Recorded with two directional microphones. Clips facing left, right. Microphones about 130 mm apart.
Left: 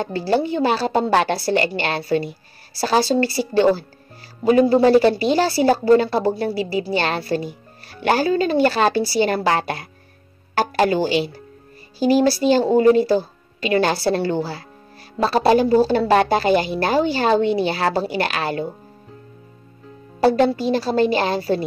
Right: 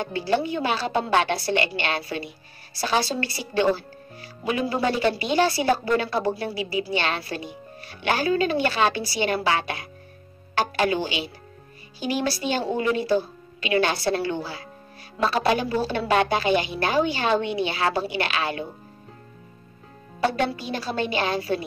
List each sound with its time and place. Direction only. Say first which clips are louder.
0.0 s speech: left 4 dB; 35° left (ahead or behind)
20.2 s speech: left 8 dB; 35° left (ahead or behind)